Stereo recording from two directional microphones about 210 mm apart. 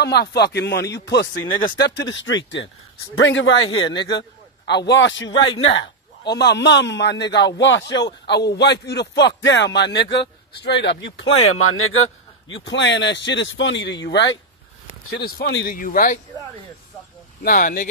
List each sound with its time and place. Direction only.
0.0 s speech: 50° left (ahead or behind)
1.3 s speech: 15° left (ahead or behind)
2.0 s a man's voice: 60° left (ahead or behind)
3.6 s a man's voice: 25° left (ahead or behind)
4.1 s a man's voice: 55° left (ahead or behind)
6.3 s a man's voice: 55° left (ahead or behind)
11.3 s a man's voice: 90° left; by 16.2 s 40° left (ahead or behind)
17.4 s speech: 40° left (ahead or behind)